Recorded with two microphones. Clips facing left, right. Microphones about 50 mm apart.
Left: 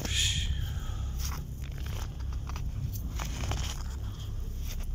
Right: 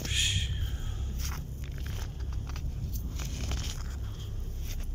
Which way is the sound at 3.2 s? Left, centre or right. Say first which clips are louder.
Left 4 dB; left.